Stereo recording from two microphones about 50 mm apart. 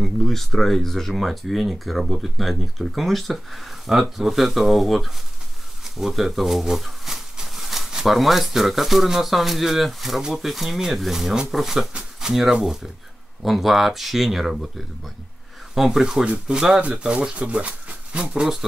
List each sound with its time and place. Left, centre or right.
0.0 s speech: centre
15.7 s speech: centre; by 18.2 s right
18.2 s speech: centre